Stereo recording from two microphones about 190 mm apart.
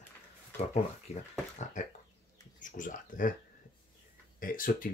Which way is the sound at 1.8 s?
40° left (ahead or behind).